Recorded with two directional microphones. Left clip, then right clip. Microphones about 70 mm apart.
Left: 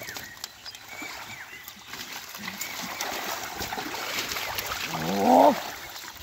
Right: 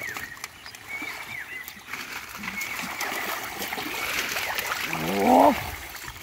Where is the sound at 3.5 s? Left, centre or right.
Right.